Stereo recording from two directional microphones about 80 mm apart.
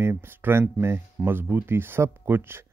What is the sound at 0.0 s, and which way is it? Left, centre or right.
Speech, right.